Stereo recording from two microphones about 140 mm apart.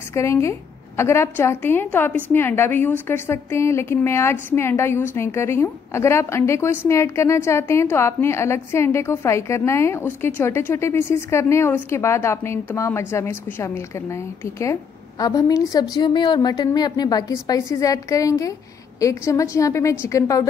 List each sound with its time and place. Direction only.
0.1 s a woman's voice: 20° left (ahead or behind)